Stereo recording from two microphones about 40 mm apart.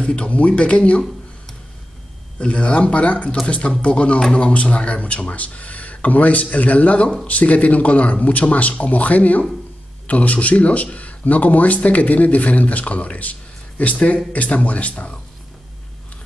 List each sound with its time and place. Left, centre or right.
0.0 s a man's voice: left
2.3 s a man's voice: left